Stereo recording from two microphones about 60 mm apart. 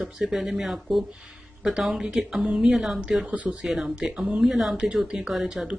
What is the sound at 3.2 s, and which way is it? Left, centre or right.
Speech, right.